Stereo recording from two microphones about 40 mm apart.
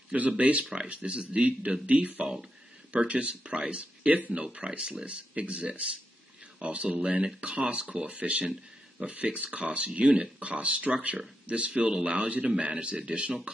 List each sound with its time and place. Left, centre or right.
0.4 s speech: right